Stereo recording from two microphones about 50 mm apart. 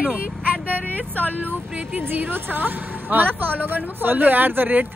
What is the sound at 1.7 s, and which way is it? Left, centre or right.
Speech, right.